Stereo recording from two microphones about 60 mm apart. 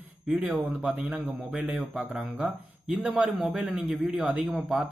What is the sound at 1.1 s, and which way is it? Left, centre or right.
Speech, right.